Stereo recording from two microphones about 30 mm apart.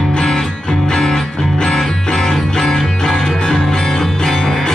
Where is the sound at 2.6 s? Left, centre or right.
Centre.